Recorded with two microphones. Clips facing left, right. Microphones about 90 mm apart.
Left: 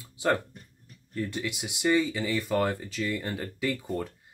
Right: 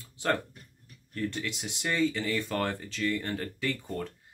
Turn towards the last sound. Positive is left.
turn(degrees=5)  # may be behind; listen again after turning